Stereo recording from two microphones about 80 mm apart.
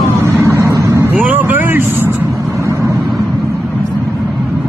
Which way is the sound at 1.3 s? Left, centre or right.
Right.